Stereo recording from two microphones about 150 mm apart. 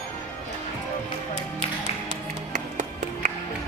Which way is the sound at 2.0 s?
55° right (ahead or behind).